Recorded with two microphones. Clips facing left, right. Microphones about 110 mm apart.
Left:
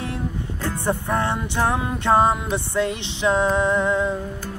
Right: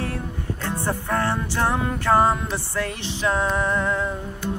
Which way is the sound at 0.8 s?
20° left (ahead or behind).